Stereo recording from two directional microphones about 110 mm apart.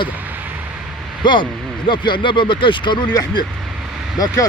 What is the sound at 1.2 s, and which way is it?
Speech, 45° left (ahead or behind).